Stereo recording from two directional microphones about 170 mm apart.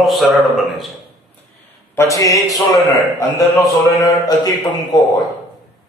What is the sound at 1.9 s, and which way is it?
Speech, 15° left (ahead or behind).